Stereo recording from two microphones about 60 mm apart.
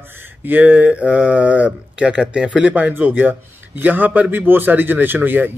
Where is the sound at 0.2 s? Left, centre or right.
Right; by 2.7 s centre.